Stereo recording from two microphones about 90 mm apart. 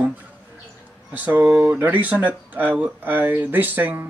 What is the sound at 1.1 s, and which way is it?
Speech, 20° right (ahead or behind).